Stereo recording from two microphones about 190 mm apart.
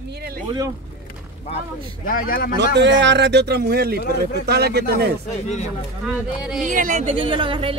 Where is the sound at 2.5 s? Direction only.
65° right (ahead or behind).